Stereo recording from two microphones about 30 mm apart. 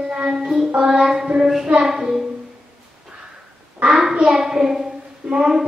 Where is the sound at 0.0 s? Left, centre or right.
Right.